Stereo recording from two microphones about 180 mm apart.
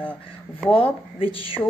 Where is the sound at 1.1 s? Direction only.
30° left (ahead or behind).